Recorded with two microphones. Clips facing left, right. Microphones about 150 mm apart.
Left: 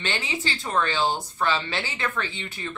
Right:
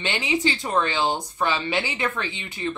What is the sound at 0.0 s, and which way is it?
A woman's voice, 20° right (ahead or behind).